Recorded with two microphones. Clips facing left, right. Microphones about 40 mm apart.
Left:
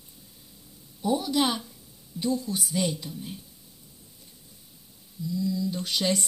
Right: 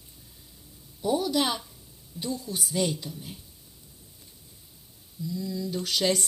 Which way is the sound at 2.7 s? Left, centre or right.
Centre.